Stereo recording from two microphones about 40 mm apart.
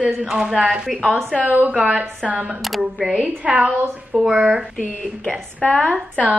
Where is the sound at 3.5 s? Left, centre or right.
Right.